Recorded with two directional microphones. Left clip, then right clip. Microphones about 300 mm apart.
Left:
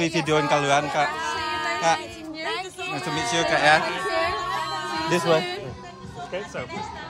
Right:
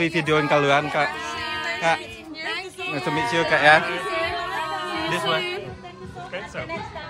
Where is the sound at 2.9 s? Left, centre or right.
Centre.